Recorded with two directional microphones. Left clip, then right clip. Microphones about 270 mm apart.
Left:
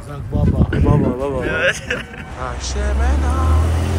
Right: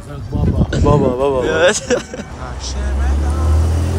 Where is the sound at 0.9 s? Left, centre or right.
Right.